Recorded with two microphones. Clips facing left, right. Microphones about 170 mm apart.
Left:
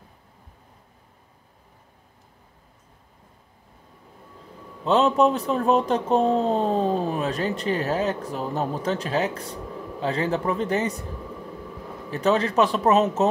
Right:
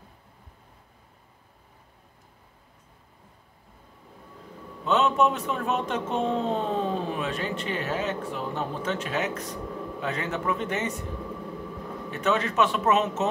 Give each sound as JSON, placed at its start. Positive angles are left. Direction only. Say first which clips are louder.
{"t": 4.8, "sound": "speech", "louder": "left 4 dB", "side_deg": 35}
{"t": 12.1, "sound": "speech", "louder": "left 4 dB", "side_deg": 35}